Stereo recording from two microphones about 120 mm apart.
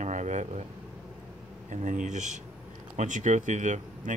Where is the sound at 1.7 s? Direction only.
90° right.